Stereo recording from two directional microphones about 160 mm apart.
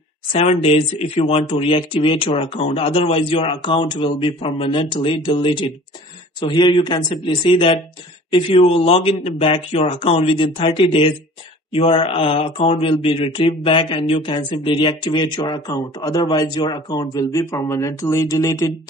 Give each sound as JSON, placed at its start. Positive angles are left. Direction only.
{"t": 0.3, "sound": "speech", "side_deg": 40}